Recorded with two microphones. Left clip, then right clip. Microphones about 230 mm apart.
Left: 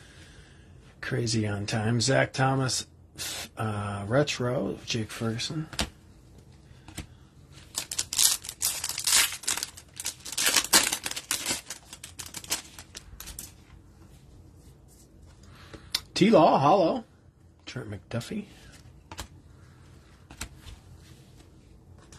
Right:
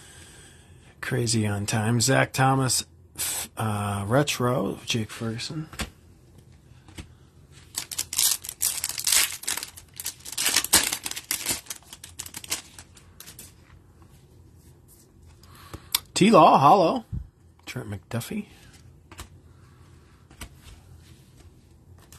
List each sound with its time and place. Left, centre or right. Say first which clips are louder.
0.9 s speech: right 3 dB; centre
5.0 s speech: left 1 dB; centre
7.7 s crumpling: even; centre
15.7 s a sound: right 3 dB; centre
17.6 s speech: right 3 dB; centre